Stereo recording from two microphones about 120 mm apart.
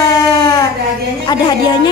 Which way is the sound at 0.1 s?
35° left (ahead or behind).